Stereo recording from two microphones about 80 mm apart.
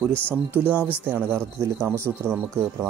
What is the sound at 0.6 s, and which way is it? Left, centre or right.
Speech, left.